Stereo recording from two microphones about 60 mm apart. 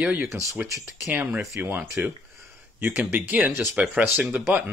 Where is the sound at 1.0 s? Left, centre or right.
Right.